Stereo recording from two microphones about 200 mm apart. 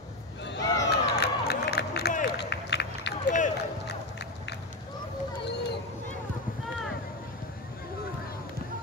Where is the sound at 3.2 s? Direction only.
40° left (ahead or behind).